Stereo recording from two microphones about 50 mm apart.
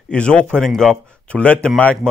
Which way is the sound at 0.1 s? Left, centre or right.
Left.